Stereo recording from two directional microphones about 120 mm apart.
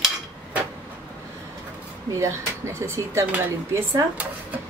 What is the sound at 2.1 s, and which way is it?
Speech, 25° right (ahead or behind).